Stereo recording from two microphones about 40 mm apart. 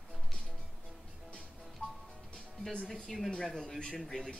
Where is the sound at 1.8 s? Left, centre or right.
Left.